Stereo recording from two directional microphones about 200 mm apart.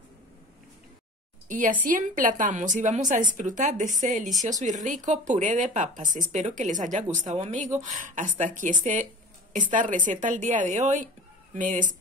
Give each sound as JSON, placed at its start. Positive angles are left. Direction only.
{"t": 1.5, "sound": "speech", "side_deg": -40}